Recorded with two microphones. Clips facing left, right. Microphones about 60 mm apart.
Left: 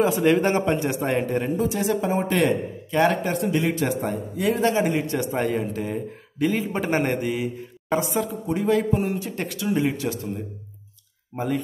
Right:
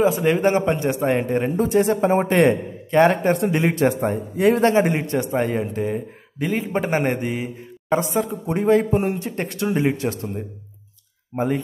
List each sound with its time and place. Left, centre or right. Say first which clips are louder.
0.3 s speech: right 2 dB; centre
1.6 s a man's voice: right 5 dB; right
5.1 s a man's voice: right 3 dB; centre; by 10.3 s right
11.3 s speech: right 3 dB; centre